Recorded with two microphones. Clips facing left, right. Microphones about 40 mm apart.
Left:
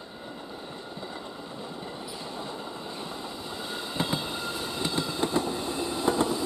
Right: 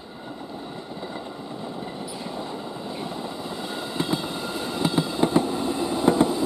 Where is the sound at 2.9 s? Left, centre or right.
Centre.